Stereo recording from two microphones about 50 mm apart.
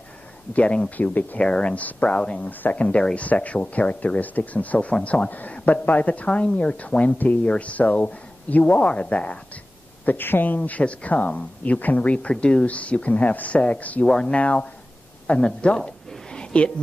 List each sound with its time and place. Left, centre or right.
0.5 s a woman's voice: left
1.4 s a woman's voice: left
10.0 s a woman's voice: left
14.0 s speech: centre
14.3 s a woman's voice: left
15.2 s a sound: left